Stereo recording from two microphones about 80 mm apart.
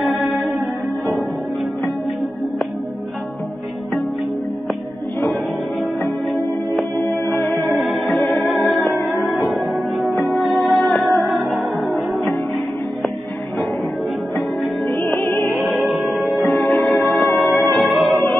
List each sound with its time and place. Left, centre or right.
0.0 s music: centre
7.0 s music: left
7.7 s music: centre
11.2 s music: centre
14.9 s music: left
15.5 s music: centre
16.3 s music: centre
17.7 s music: centre